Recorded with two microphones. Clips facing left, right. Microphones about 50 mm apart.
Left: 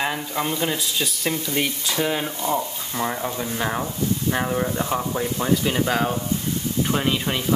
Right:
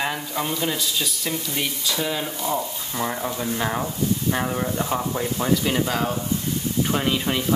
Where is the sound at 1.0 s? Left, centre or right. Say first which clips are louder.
Left 2 dB; left.